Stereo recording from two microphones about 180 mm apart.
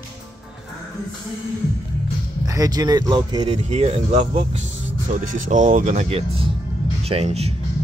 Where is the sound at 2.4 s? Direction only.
20° right (ahead or behind).